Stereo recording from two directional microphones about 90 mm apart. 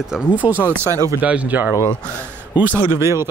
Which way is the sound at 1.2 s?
15° right (ahead or behind).